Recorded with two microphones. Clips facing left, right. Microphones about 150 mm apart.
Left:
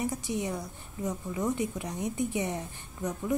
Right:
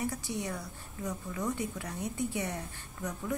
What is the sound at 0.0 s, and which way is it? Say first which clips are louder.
A woman's voice: left 3 dB; 20° left (ahead or behind).